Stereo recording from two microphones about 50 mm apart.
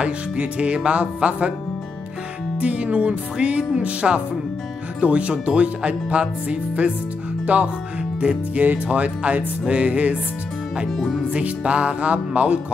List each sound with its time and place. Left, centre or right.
0.0 s speech: right
2.5 s speech: right
10.9 s speech: centre
11.3 s speech: right